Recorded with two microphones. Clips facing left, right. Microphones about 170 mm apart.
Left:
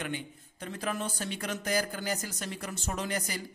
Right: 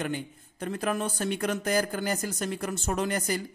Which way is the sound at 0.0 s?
45° right (ahead or behind).